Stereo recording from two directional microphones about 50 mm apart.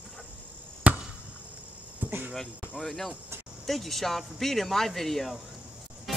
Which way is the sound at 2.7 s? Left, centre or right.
Centre.